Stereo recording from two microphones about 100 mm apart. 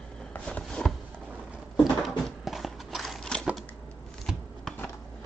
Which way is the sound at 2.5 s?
Centre (ahead or behind).